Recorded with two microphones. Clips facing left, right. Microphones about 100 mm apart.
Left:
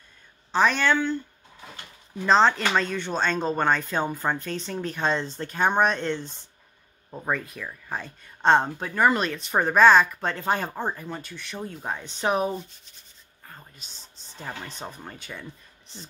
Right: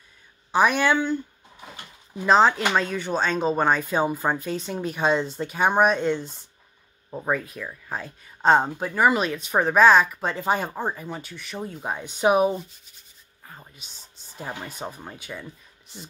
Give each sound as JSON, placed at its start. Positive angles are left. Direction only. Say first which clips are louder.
{"t": 0.5, "sound": "speech", "louder": "right 2 dB", "side_deg": -10}